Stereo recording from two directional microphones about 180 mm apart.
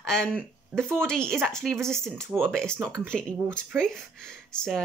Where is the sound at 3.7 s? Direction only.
5° left (ahead or behind).